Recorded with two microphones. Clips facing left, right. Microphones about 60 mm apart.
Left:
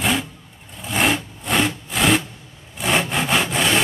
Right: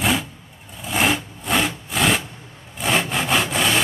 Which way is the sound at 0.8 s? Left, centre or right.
Centre.